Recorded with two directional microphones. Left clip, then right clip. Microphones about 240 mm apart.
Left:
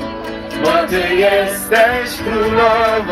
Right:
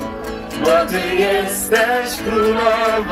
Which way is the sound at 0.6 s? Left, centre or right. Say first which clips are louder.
Even; right.